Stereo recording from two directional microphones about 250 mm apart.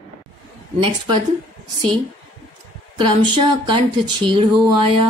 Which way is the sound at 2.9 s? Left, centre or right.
Centre.